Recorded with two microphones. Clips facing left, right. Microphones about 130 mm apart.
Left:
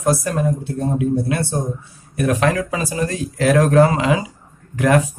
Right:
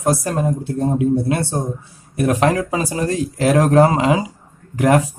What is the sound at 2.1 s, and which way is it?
Speech, 30° right (ahead or behind).